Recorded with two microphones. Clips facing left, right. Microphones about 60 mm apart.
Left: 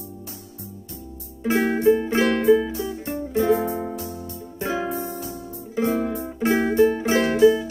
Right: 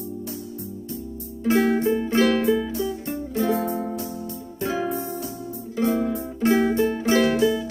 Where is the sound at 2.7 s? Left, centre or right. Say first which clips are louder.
Right 1 dB; left.